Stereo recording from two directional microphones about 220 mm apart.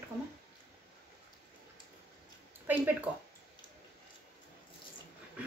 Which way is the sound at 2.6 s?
10° right (ahead or behind).